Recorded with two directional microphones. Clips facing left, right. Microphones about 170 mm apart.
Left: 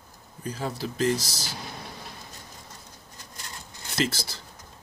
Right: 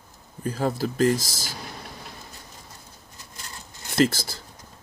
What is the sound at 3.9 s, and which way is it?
Speech, 50° right (ahead or behind).